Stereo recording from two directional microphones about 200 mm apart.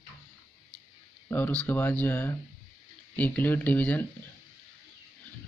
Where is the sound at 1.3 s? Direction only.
5° left (ahead or behind).